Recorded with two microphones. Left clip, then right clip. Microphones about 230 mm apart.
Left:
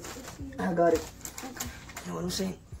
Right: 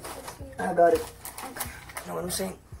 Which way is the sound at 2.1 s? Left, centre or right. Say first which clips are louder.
Right 2 dB; centre.